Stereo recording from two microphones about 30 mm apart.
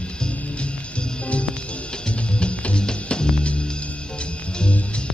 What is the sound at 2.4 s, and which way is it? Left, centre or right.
Music, left.